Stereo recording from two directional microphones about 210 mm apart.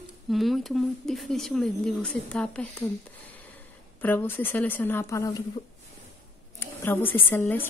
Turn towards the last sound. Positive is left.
turn(degrees=10)  # may be behind; listen again after turning